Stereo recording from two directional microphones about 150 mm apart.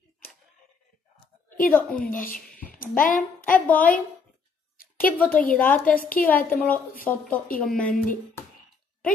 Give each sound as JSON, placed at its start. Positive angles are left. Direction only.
{"t": 1.7, "sound": "a woman's voice", "side_deg": 10}
{"t": 2.8, "sound": "speech", "side_deg": 65}
{"t": 3.4, "sound": "a woman's voice", "side_deg": 10}
{"t": 5.0, "sound": "a woman's voice", "side_deg": 10}
{"t": 5.9, "sound": "a woman's voice", "side_deg": 65}
{"t": 6.2, "sound": "a woman's voice", "side_deg": 10}